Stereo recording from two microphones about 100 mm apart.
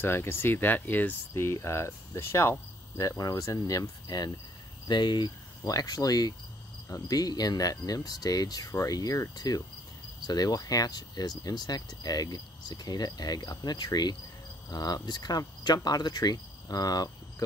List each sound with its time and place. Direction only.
0.0 s speech: 25° left (ahead or behind); by 17.1 s 40° left (ahead or behind)